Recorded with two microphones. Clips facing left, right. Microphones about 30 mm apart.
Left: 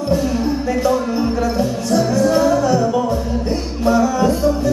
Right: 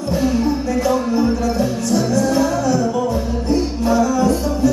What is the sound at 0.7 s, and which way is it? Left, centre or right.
Music, centre.